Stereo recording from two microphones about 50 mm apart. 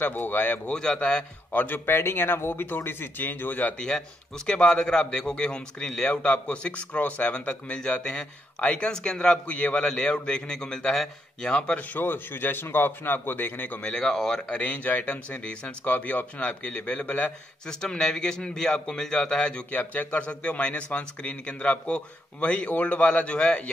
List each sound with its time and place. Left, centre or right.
0.0 s speech: left
0.9 s speech: left
1.5 s speech: left
2.0 s speech: left
3.7 s a man's voice: centre
9.5 s a man's voice: left
11.8 s speech: left
13.9 s a man's voice: centre
14.5 s speech: left
17.6 s a man's voice: centre
19.7 s speech: left